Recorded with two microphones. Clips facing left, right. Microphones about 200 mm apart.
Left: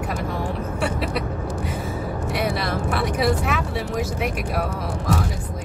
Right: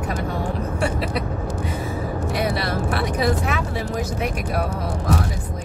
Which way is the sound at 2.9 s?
Centre (ahead or behind).